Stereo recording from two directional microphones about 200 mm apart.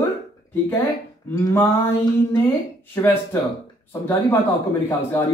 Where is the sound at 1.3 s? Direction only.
10° left (ahead or behind).